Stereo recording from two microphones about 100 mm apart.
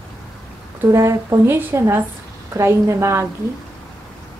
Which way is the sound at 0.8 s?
30° right (ahead or behind).